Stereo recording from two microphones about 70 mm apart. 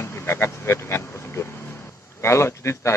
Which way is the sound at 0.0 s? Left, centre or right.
Left.